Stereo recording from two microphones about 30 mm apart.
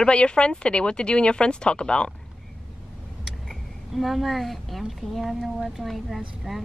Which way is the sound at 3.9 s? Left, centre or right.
Centre.